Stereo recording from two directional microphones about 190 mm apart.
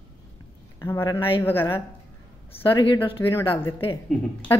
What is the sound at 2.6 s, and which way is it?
Speech, 25° left (ahead or behind).